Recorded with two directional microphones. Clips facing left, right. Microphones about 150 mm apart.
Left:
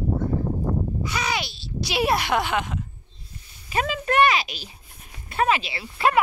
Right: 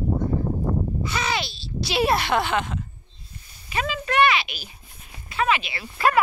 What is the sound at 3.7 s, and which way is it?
Speech, 45° left (ahead or behind).